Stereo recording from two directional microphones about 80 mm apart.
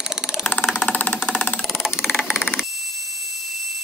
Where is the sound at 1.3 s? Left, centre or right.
Centre.